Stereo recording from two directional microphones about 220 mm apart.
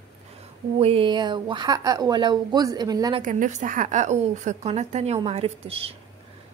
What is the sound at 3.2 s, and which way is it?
A woman's voice, 35° right (ahead or behind).